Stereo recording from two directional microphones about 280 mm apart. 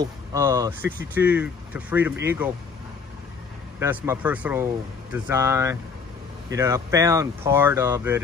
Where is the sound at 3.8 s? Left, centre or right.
Centre.